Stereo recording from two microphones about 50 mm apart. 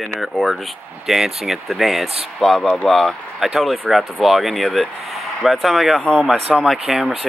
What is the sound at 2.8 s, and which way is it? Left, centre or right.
Speech, centre.